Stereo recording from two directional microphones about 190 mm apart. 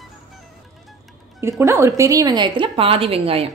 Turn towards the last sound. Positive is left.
turn(degrees=-30)  # may be behind; listen again after turning